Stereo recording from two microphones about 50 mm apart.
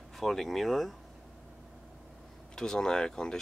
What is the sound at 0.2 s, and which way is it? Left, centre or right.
Speech, centre.